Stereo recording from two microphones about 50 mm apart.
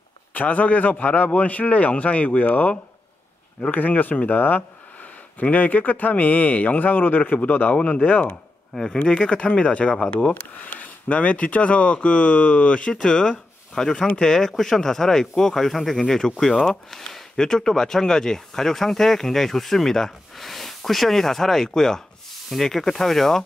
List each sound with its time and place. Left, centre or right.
0.3 s speech: left
8.0 s speech: left
8.9 s speech: left; by 23.4 s centre